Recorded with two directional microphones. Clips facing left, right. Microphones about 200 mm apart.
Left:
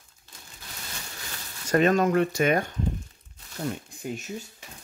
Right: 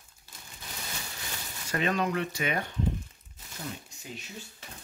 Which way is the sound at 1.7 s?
45° left (ahead or behind).